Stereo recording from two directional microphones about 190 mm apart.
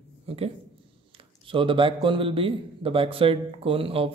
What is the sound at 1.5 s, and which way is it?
A man's voice, 25° right (ahead or behind).